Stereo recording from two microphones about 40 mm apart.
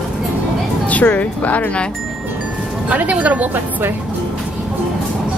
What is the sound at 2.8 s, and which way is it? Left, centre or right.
Speech, right.